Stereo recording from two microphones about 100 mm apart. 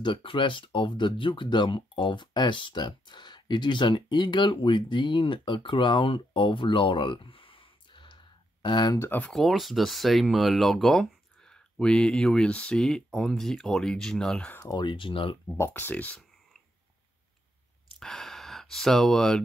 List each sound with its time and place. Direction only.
0.0 s speech: 55° left (ahead or behind)
8.9 s speech: 20° left (ahead or behind)
9.3 s speech: centre (ahead or behind)
14.7 s speech: 50° left (ahead or behind)
15.4 s speech: 25° left (ahead or behind)
17.9 s gasp: 5° left (ahead or behind)